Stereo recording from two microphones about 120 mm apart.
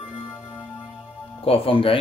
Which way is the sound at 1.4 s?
50° left (ahead or behind).